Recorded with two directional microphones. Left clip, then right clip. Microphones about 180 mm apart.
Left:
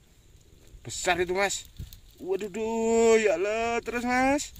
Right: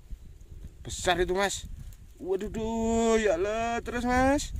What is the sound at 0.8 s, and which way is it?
Speech, centre (ahead or behind).